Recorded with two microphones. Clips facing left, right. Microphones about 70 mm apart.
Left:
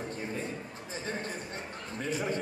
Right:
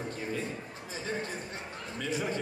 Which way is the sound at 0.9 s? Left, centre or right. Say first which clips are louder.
Right 1 dB; left.